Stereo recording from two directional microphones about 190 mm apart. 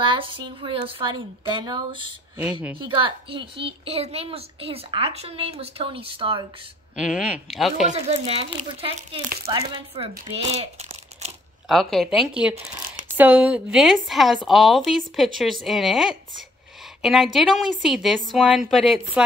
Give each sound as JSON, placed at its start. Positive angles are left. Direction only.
{"t": 0.0, "sound": "a child's voice", "side_deg": -25}
{"t": 7.3, "sound": "a woman's voice", "side_deg": 0}
{"t": 7.9, "sound": "speech", "side_deg": -35}
{"t": 11.6, "sound": "a woman's voice", "side_deg": 0}